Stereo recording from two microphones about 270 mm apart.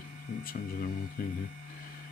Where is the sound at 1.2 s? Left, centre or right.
Left.